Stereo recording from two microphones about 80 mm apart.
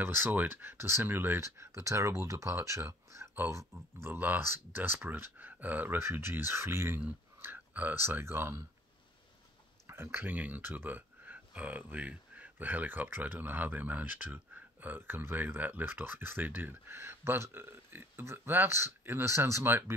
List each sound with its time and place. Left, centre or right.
0.0 s speech: right
2.8 s a sound: right
3.4 s speech: right
5.9 s speech: right
9.8 s speech: right